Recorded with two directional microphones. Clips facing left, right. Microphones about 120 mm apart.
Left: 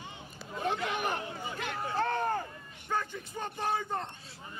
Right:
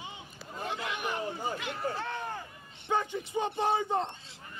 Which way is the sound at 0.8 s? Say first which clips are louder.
Left 1 dB; 45° left (ahead or behind).